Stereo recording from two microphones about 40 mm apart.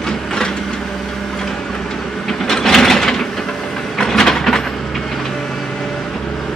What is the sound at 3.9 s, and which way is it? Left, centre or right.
Vehicle, centre.